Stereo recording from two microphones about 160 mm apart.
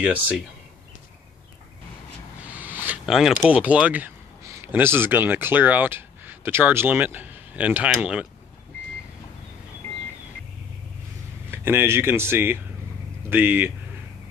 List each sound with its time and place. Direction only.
2.4 s speech: 10° right (ahead or behind)
11.5 s speech: 15° right (ahead or behind)